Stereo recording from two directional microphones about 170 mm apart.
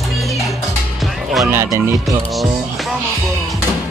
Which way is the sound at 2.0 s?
Centre (ahead or behind).